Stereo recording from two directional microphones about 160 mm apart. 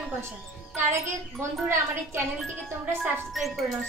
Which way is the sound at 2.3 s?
5° left (ahead or behind).